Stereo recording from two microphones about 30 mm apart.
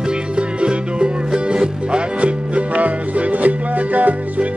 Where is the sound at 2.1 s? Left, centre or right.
Right.